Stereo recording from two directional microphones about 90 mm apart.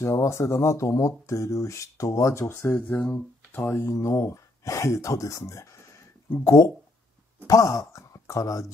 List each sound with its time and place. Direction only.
0.0 s speech: 30° left (ahead or behind)
2.7 s speech: 15° left (ahead or behind)
3.7 s speech: 35° left (ahead or behind)